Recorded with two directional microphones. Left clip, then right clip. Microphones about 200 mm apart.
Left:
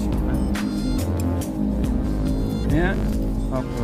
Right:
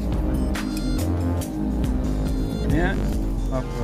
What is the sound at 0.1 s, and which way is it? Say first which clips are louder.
Music: left 1 dB; centre (ahead or behind).